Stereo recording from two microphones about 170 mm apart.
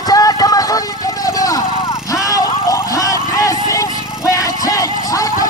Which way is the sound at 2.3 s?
20° left (ahead or behind).